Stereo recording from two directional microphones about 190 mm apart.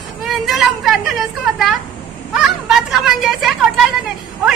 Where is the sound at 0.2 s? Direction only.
Centre (ahead or behind).